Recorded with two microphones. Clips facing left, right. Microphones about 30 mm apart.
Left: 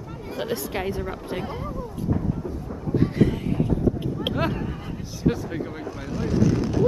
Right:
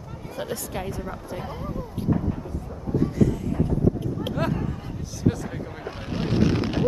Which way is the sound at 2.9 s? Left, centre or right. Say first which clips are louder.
Left 1 dB; left.